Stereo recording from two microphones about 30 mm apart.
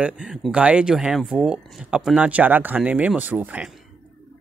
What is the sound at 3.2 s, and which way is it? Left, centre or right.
Speech, right.